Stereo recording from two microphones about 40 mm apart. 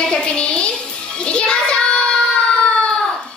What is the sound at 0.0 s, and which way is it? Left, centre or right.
Music, left.